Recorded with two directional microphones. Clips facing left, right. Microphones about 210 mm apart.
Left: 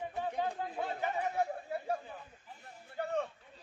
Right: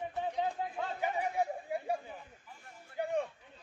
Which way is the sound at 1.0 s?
15° right (ahead or behind).